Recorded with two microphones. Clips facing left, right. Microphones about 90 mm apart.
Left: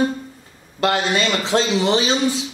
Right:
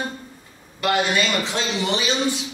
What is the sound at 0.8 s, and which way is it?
Speech, 30° left (ahead or behind).